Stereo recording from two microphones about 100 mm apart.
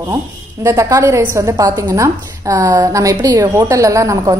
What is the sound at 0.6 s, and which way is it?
A woman's voice, 30° right (ahead or behind).